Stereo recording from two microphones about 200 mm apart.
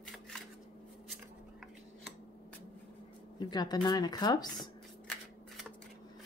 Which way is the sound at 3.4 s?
20° left (ahead or behind).